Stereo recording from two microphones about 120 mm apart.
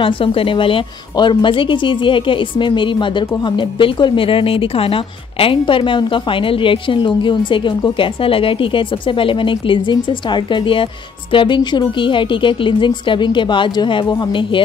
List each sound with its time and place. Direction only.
0.0 s a woman's voice: 50° left (ahead or behind)